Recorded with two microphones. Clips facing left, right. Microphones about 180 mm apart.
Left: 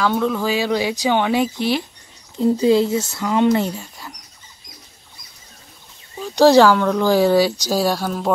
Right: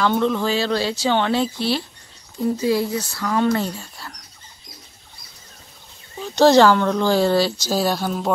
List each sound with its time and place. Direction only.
0.0 s speech: 5° left (ahead or behind)
6.2 s speech: 10° left (ahead or behind)